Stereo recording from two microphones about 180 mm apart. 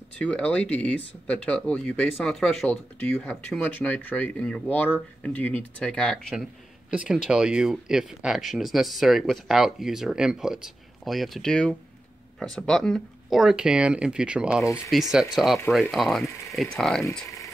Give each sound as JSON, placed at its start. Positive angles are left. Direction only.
{"t": 0.2, "sound": "speech", "side_deg": 5}